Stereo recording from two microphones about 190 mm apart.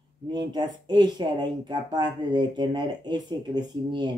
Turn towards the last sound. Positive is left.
turn(degrees=-25)  # may be behind; listen again after turning